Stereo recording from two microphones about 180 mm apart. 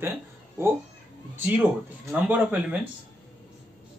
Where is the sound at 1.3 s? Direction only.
10° right (ahead or behind).